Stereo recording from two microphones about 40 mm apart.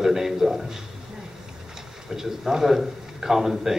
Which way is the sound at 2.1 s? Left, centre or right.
Centre.